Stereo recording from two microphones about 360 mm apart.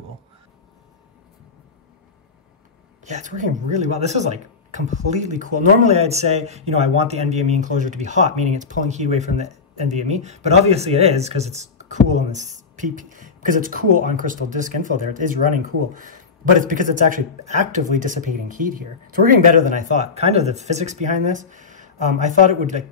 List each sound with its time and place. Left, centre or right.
3.1 s speech: right